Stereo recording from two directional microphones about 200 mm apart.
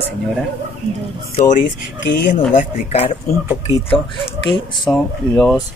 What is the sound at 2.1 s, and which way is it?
Speech, 65° left (ahead or behind).